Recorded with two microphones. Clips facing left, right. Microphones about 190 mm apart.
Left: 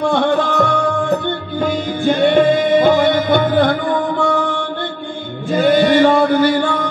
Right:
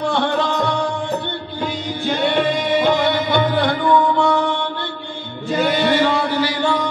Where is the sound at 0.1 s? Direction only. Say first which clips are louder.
Left 4 dB; 50° left (ahead or behind).